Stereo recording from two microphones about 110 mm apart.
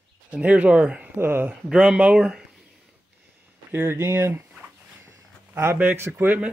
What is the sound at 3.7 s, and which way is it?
Speech, 20° right (ahead or behind).